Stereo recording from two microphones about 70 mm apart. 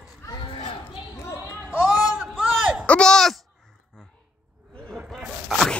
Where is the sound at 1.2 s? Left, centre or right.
Left.